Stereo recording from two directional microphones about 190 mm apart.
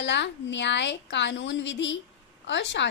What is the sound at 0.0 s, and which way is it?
A woman's voice, 70° left (ahead or behind).